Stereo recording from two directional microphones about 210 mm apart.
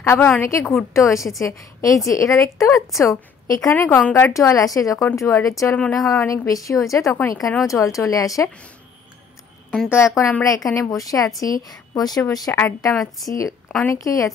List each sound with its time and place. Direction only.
0.0 s a woman's voice: 10° left (ahead or behind)
9.7 s a woman's voice: 10° left (ahead or behind)